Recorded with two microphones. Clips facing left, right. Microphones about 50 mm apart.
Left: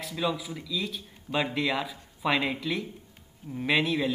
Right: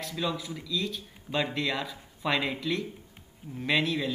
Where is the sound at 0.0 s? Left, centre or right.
Centre.